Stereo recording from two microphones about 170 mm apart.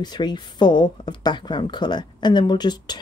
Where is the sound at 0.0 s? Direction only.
25° left (ahead or behind).